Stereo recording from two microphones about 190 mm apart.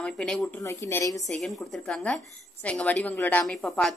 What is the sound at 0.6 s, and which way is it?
Speech, 15° left (ahead or behind).